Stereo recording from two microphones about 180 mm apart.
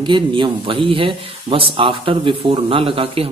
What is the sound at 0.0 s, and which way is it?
Speech, 25° right (ahead or behind).